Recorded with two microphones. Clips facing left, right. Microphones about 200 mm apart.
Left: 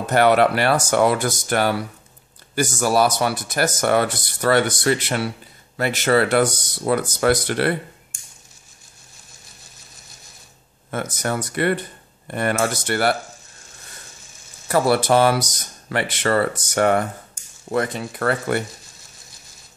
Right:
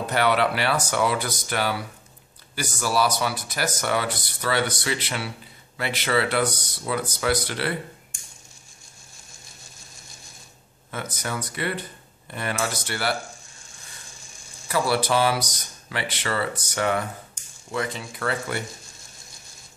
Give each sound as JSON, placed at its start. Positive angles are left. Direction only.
{"t": 0.0, "sound": "speech", "side_deg": 50}
{"t": 10.9, "sound": "speech", "side_deg": 50}
{"t": 14.7, "sound": "speech", "side_deg": 50}